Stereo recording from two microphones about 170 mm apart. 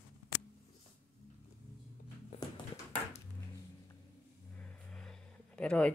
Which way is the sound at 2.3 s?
40° left (ahead or behind).